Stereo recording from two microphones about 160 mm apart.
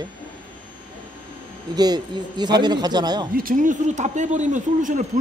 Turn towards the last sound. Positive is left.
turn(degrees=-50)  # may be behind; listen again after turning